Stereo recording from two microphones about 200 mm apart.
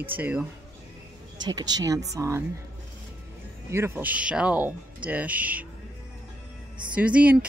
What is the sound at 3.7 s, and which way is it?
Speech, 10° right (ahead or behind).